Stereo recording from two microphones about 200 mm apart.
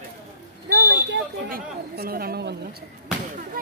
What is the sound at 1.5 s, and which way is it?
Speech, 50° right (ahead or behind).